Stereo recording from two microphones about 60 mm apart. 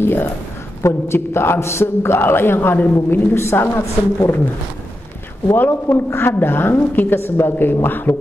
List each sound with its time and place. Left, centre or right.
0.0 s a woman's voice: left
5.5 s a woman's voice: left